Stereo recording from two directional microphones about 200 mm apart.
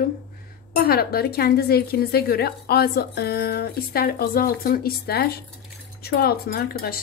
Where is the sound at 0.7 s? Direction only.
50° left (ahead or behind).